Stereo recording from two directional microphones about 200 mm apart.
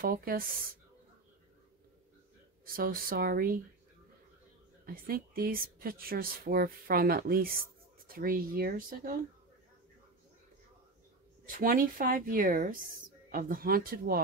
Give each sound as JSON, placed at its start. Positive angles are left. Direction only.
{"t": 0.0, "sound": "speech", "side_deg": -45}
{"t": 2.6, "sound": "speech", "side_deg": -45}
{"t": 4.8, "sound": "speech", "side_deg": -45}
{"t": 11.4, "sound": "speech", "side_deg": -45}